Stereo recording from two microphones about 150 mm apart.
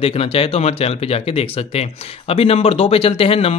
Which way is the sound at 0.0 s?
40° left (ahead or behind).